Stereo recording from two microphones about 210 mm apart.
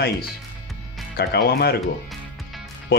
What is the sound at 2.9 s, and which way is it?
Speech, 50° left (ahead or behind).